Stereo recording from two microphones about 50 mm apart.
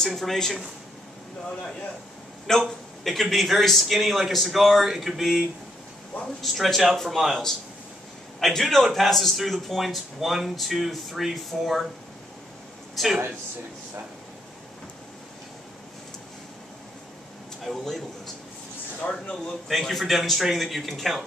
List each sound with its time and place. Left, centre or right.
0.0 s speech: centre
2.5 s a man's voice: centre
6.4 s a man's voice: centre
12.9 s speech: centre
17.6 s a man's voice: centre
19.0 s speech: left
19.7 s a man's voice: centre